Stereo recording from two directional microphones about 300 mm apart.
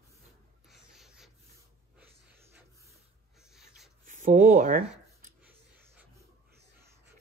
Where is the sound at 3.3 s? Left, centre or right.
Centre.